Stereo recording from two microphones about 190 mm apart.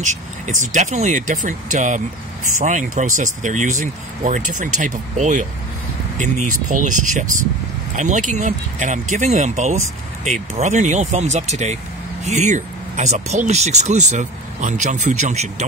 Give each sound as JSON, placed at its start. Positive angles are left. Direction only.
{"t": 0.6, "sound": "speech", "side_deg": -40}